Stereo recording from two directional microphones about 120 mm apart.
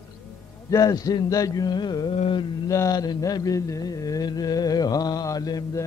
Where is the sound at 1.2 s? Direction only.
30° left (ahead or behind).